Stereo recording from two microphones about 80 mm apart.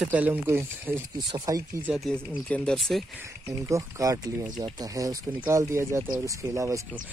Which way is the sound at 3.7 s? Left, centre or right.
Right.